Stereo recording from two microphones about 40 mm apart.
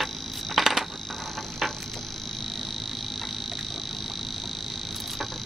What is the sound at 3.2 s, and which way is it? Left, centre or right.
Frog, centre.